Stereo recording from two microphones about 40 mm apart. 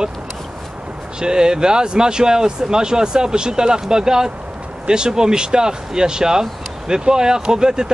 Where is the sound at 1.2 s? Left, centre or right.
Centre.